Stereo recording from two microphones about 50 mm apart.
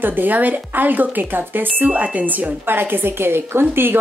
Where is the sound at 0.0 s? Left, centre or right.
Right.